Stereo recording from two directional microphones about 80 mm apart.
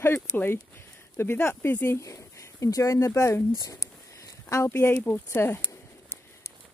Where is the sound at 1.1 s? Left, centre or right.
Left.